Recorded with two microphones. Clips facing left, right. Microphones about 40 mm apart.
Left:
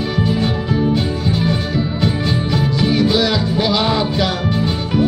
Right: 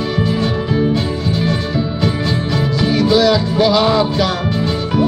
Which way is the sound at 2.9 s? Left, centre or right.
Left.